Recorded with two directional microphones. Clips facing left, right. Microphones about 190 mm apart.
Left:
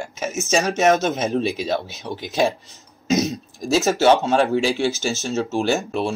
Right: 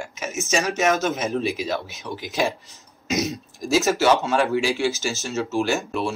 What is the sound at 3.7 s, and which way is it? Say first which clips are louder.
Speech: left 2 dB; 25° left (ahead or behind).